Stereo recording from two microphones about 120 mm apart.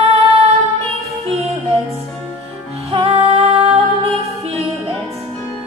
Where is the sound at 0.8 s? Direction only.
60° right (ahead or behind).